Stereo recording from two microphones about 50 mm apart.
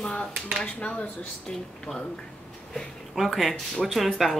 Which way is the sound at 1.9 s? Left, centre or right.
Left.